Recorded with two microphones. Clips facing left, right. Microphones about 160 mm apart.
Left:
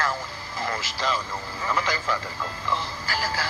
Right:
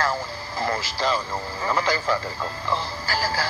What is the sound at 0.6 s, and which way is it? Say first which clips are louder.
Speech: right 4 dB; 35° right (ahead or behind).